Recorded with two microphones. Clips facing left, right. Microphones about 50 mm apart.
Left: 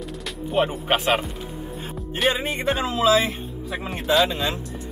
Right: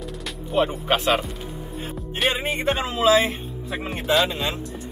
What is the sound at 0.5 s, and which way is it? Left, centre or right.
Speech, centre.